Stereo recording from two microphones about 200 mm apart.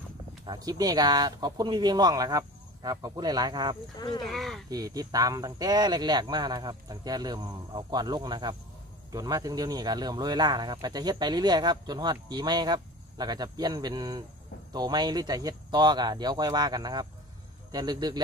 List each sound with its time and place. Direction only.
0.5 s speech: 20° right (ahead or behind)
4.3 s speech: centre (ahead or behind)
4.6 s speech: 20° right (ahead or behind)